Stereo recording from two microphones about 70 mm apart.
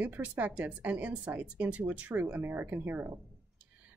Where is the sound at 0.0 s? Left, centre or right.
Right.